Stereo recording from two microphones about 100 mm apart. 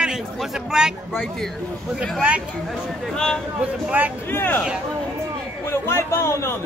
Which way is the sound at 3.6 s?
15° right (ahead or behind).